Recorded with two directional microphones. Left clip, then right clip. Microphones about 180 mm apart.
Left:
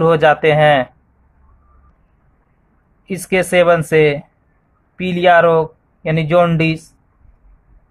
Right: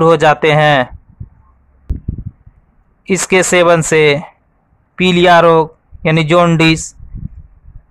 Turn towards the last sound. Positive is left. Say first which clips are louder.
# right 4 dB
turn(degrees=-40)  # may be behind; listen again after turning